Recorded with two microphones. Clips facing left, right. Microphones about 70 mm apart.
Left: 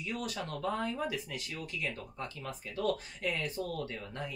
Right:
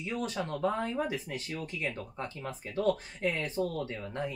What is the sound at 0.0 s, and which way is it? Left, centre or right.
Speech, right.